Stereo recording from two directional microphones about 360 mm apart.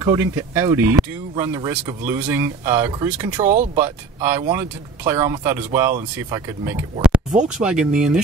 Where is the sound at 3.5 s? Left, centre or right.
Centre.